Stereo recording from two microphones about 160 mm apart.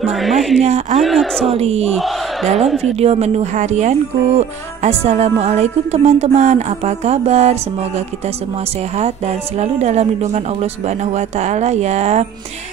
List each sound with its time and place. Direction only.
0.1 s speech: centre (ahead or behind)
0.6 s speech: 45° right (ahead or behind)
1.0 s speech: centre (ahead or behind)
1.5 s speech: 40° right (ahead or behind)